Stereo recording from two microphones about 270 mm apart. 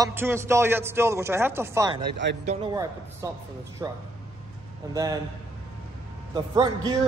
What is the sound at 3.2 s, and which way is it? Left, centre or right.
A man's voice, centre.